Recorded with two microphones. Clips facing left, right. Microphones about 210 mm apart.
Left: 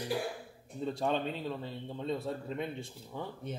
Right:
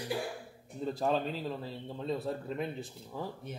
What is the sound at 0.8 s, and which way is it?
Speech, centre (ahead or behind).